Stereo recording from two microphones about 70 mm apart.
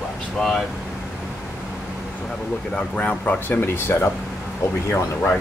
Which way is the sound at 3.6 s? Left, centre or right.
Left.